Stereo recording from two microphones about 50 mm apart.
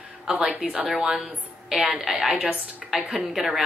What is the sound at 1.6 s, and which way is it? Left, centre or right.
Speech, centre.